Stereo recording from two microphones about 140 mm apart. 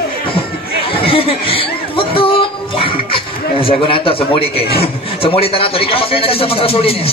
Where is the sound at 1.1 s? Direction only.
40° left (ahead or behind).